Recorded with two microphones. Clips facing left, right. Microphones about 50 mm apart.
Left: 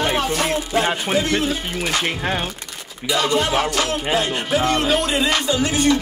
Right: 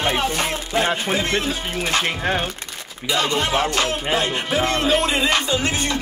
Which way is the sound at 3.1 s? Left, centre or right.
Right.